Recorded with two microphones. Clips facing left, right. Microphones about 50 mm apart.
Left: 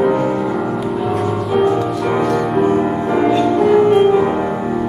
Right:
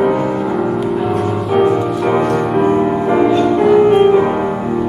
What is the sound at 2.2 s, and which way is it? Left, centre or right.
Music, centre.